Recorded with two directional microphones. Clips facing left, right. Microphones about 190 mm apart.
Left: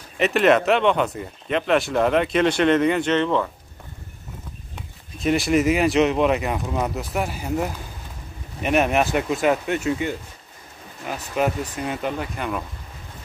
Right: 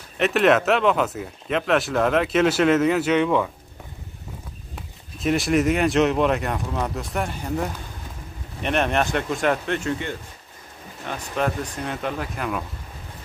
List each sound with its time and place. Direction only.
0.2 s speech: centre (ahead or behind)
4.7 s speech: centre (ahead or behind)